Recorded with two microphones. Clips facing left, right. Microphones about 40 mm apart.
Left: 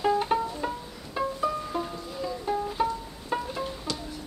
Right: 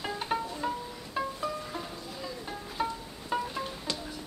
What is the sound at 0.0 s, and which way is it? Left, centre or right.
Music, centre.